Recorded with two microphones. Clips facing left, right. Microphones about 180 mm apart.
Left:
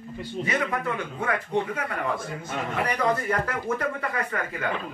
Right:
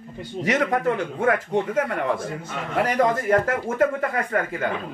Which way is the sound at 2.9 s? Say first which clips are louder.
Right 6 dB; 45° right (ahead or behind).